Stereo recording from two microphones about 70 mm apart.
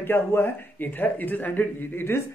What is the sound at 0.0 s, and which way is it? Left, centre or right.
Speech, left.